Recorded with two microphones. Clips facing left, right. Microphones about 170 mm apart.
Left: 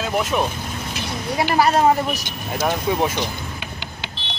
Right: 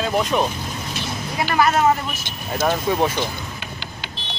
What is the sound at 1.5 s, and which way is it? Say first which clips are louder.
Speech: left 1 dB; 35° left (ahead or behind).